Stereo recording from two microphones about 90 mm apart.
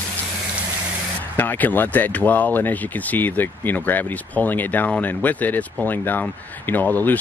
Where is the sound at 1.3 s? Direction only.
20° left (ahead or behind).